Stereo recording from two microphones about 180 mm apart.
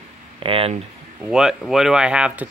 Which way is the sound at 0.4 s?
30° right (ahead or behind).